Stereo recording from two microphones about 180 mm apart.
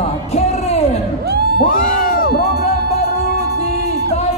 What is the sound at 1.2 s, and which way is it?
Music, 65° right (ahead or behind).